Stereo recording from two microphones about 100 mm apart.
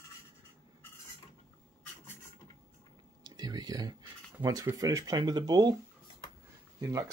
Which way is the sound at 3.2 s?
45° right (ahead or behind).